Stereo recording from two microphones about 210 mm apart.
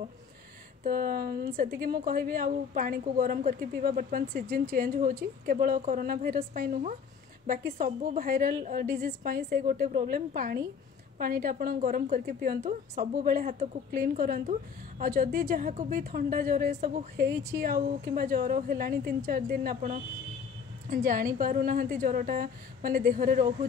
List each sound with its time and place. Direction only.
0.8 s a woman's voice: 45° right (ahead or behind)
12.6 s a woman's voice: 30° right (ahead or behind)
13.1 s a woman's voice: 45° right (ahead or behind)
17.3 s speech: 15° right (ahead or behind)
17.6 s a woman's voice: 45° right (ahead or behind)